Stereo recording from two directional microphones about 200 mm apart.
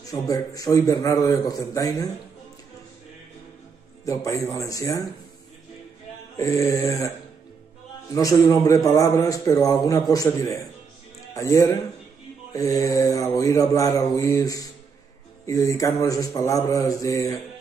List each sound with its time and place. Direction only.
0.1 s a man's voice: 15° left (ahead or behind)
4.0 s a man's voice: 15° left (ahead or behind)
6.3 s a man's voice: 15° left (ahead or behind)
8.1 s a man's voice: 15° left (ahead or behind)